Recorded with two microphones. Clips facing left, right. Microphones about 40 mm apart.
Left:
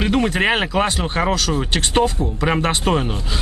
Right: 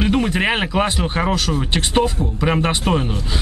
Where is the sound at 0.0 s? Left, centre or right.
Centre.